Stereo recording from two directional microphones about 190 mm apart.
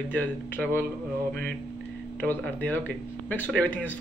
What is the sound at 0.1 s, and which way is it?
Speech, 10° left (ahead or behind).